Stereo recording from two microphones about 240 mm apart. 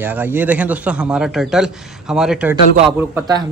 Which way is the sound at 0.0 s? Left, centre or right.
Centre.